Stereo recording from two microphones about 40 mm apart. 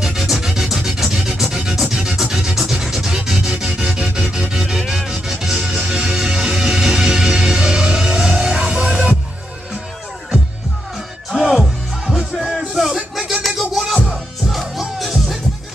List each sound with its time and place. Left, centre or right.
0.0 s music: centre
2.0 s scratch: centre
2.5 s music: centre
3.9 s music: centre
4.6 s music: centre
5.8 s music: centre
11.2 s music: centre